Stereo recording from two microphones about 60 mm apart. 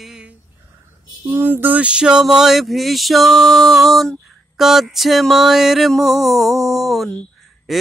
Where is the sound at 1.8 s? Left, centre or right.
Centre.